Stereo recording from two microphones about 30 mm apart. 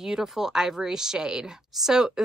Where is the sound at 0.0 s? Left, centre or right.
Centre.